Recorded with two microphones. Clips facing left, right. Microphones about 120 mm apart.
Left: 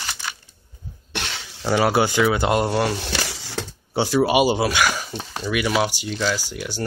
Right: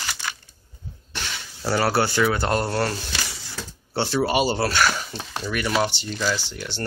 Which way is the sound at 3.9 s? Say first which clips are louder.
Left 4 dB; 10° left (ahead or behind).